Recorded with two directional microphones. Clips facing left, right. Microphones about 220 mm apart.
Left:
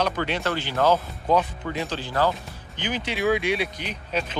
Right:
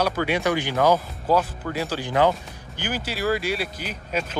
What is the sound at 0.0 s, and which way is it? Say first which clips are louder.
Speech: right 3 dB; 10° right (ahead or behind).